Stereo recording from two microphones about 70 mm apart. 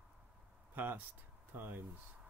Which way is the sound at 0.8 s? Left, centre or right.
Right.